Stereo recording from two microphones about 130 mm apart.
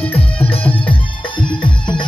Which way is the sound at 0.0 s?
15° left (ahead or behind).